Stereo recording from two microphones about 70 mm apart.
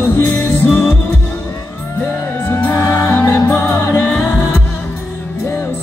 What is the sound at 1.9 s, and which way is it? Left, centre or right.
Music, left.